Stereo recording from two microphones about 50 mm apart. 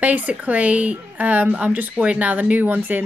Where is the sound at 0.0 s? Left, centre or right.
Right.